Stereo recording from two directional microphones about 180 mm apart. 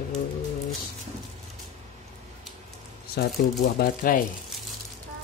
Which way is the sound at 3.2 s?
60° left (ahead or behind).